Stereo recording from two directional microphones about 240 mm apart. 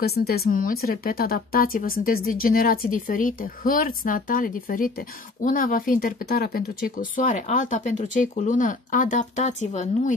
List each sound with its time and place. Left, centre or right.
0.0 s speech: left